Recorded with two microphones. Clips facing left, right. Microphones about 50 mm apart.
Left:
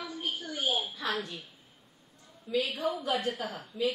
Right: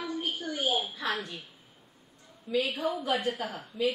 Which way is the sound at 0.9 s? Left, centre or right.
Centre.